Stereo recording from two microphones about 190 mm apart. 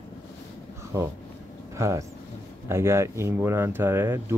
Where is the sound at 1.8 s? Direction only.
15° right (ahead or behind).